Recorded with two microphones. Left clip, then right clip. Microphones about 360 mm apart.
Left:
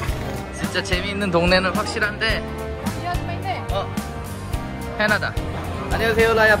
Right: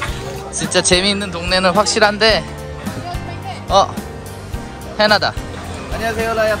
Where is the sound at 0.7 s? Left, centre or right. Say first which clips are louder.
Right 10 dB; centre.